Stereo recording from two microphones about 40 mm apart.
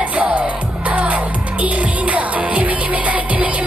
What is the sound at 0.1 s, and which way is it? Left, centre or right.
Music, right.